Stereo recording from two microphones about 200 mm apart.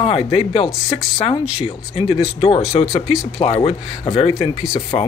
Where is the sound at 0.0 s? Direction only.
30° left (ahead or behind).